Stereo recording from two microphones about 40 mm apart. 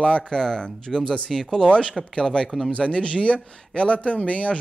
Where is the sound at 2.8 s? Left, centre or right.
Left.